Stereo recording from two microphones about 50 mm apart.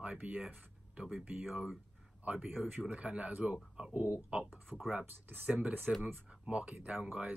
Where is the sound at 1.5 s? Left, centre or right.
Centre.